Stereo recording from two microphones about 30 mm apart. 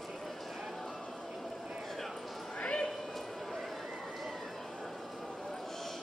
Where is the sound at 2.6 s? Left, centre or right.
Left.